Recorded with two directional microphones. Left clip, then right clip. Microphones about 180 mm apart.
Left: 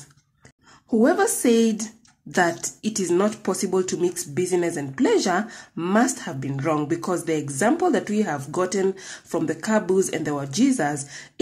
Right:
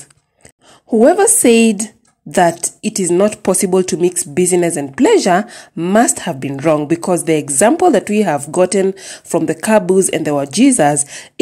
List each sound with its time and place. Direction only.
1.0 s speech: 35° right (ahead or behind)